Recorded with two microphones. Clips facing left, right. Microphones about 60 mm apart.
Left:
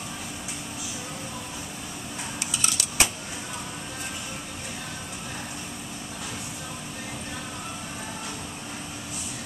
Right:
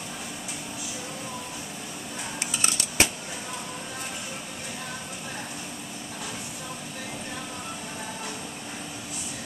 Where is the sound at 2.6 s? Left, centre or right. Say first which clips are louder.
Right 1 dB; right.